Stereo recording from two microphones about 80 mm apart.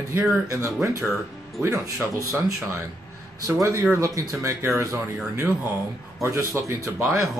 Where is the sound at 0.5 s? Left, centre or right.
Right.